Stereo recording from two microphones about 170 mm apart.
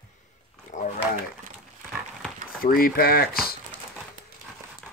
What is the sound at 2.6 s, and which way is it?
Speech, 60° left (ahead or behind).